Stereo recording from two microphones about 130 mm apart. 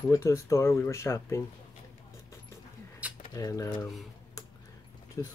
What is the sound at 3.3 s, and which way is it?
Speech, 25° left (ahead or behind).